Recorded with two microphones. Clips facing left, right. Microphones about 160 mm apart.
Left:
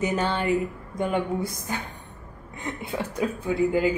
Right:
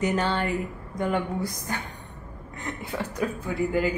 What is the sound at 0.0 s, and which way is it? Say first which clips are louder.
A woman's voice: even; 15° left (ahead or behind).